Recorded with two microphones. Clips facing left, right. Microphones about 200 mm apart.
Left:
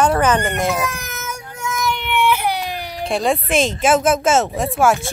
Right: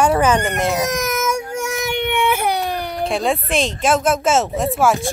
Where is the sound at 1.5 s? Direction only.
75° right (ahead or behind).